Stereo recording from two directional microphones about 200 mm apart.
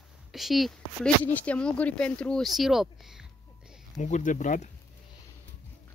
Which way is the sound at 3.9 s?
40° left (ahead or behind).